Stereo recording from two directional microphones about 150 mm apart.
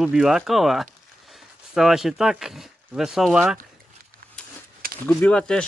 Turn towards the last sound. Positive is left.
turn(degrees=5)  # may be behind; listen again after turning